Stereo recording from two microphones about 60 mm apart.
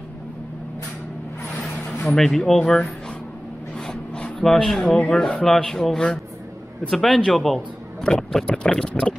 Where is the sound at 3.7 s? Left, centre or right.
Centre.